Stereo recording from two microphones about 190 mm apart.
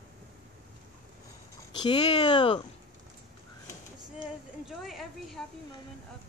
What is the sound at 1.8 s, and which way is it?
Speech, 30° left (ahead or behind).